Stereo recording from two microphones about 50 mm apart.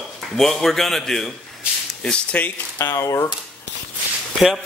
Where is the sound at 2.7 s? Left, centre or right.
Left.